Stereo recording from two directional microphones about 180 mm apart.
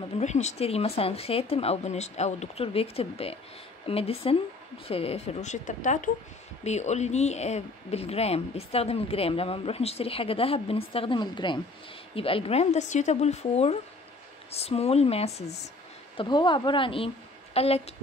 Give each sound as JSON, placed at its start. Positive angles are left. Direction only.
{"t": 0.2, "sound": "speech", "side_deg": 40}